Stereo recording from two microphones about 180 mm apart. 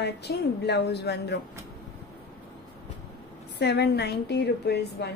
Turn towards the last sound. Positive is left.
turn(degrees=70)  # may be behind; listen again after turning